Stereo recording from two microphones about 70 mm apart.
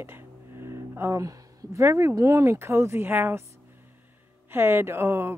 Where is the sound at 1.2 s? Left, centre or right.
Right.